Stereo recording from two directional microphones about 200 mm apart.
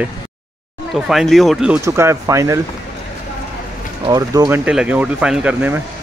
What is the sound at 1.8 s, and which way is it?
Speech, 15° right (ahead or behind).